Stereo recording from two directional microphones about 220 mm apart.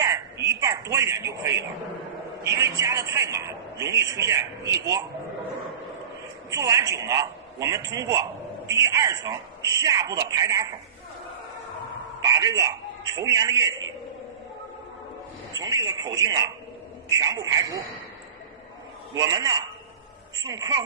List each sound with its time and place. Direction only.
0.6 s speech: 15° right (ahead or behind)
2.6 s a man's voice: 15° right (ahead or behind)
6.5 s a man's voice: 15° right (ahead or behind)
12.2 s a man's voice: 15° right (ahead or behind)
15.5 s a man's voice: 15° right (ahead or behind)
19.1 s a man's voice: 15° right (ahead or behind)